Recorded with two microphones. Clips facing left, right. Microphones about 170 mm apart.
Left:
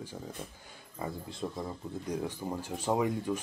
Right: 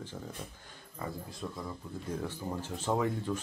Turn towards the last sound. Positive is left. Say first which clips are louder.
# left 2 dB
turn(degrees=10)  # may be behind; listen again after turning